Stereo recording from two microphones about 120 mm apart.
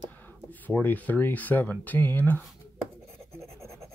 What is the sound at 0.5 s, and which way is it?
Speech, 15° left (ahead or behind).